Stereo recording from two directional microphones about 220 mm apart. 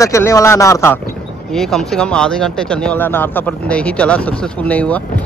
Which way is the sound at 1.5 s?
Centre (ahead or behind).